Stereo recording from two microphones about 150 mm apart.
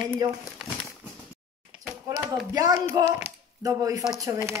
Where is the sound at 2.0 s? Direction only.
20° right (ahead or behind).